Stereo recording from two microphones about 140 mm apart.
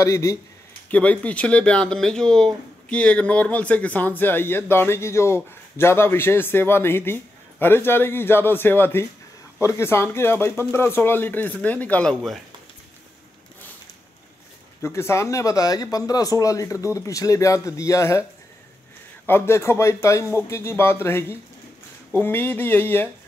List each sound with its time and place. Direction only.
0.0 s a man's voice: 25° left (ahead or behind)
0.8 s a man's voice: 10° left (ahead or behind)
14.8 s a man's voice: 20° left (ahead or behind)
19.2 s a man's voice: 15° left (ahead or behind)